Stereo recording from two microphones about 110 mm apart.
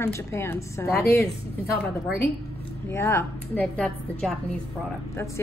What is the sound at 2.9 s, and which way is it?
Speech, 25° left (ahead or behind).